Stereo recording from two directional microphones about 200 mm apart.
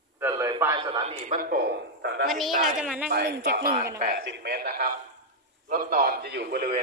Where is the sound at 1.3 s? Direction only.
45° right (ahead or behind).